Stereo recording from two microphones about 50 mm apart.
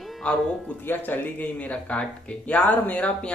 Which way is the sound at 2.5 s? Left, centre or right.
Left.